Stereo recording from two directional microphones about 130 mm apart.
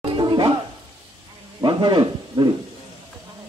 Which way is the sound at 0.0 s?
40° right (ahead or behind).